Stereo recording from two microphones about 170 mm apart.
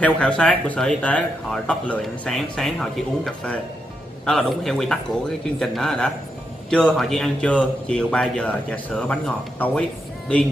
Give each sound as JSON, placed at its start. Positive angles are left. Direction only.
{"t": 0.0, "sound": "a man's voice", "side_deg": 5}